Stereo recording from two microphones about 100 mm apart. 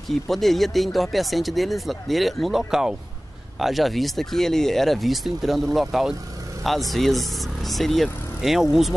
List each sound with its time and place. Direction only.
0.3 s speech: centre (ahead or behind)